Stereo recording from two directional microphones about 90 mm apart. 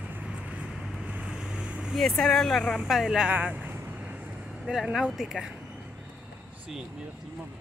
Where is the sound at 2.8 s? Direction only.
5° right (ahead or behind).